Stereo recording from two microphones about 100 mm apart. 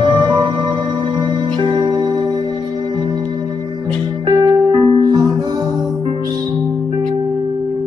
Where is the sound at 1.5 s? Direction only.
55° right (ahead or behind).